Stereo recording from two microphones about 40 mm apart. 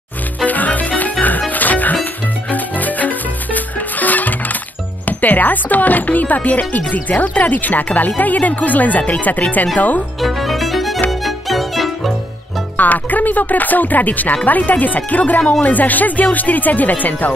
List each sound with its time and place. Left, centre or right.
0.5 s music: left
5.0 s speech: left
10.2 s music: centre
12.7 s speech: left